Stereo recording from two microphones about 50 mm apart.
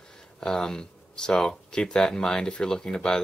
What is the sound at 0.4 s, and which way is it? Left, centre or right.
Speech, centre.